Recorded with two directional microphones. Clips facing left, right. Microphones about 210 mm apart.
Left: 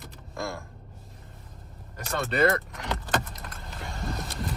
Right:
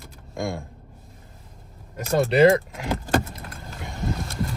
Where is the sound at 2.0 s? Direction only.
30° right (ahead or behind).